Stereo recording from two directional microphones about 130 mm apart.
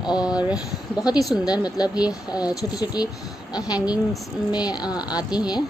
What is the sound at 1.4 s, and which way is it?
Speech, 30° left (ahead or behind).